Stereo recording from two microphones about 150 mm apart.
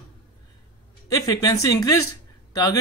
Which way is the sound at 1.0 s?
25° left (ahead or behind).